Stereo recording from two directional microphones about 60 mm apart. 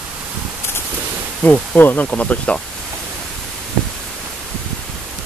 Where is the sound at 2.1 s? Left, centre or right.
Left.